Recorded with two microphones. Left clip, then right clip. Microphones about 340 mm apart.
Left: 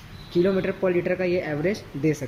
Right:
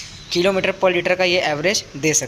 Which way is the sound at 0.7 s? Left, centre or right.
Centre.